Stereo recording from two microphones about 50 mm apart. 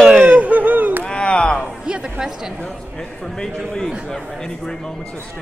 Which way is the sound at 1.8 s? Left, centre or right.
Centre.